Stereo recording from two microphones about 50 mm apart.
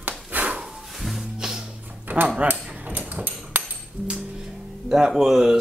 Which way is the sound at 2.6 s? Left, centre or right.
Right.